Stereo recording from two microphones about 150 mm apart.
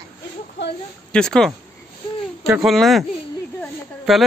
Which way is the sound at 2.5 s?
Centre (ahead or behind).